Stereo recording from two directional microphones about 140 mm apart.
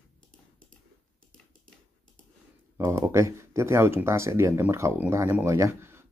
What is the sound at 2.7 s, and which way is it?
Speech, 20° right (ahead or behind).